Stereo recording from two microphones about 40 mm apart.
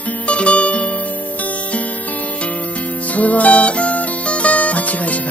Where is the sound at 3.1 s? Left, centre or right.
Left.